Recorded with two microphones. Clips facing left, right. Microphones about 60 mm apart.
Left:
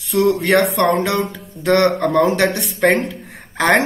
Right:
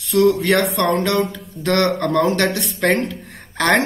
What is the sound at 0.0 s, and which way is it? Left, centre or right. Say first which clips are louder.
Speech: right 1 dB; centre.